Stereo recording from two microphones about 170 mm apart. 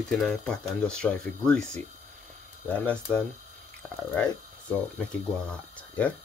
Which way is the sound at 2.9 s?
5° left (ahead or behind).